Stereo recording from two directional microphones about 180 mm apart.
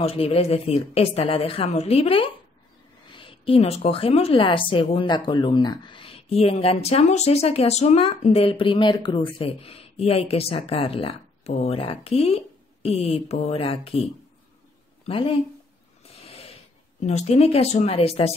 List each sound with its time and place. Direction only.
0.0 s a woman's voice: 35° left (ahead or behind)
15.0 s speech: 30° left (ahead or behind)
16.0 s a sound: 35° left (ahead or behind)
17.0 s speech: 35° left (ahead or behind)